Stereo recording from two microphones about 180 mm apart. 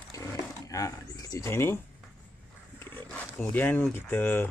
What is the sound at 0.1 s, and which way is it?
Roaring cats, 20° left (ahead or behind).